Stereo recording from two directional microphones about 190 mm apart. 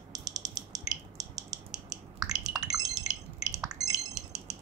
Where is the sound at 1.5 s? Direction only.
20° right (ahead or behind).